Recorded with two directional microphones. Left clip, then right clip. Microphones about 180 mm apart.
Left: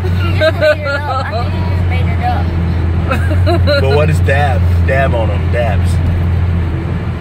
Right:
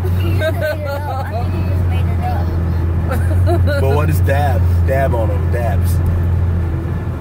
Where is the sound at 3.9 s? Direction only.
45° right (ahead or behind).